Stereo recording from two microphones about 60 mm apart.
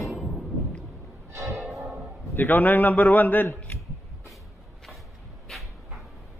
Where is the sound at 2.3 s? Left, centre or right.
Left.